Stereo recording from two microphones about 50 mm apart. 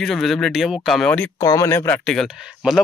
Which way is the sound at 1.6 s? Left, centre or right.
Left.